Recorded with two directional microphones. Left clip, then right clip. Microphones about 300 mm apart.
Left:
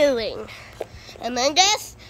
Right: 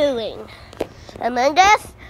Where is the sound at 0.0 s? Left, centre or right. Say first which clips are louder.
Even; centre.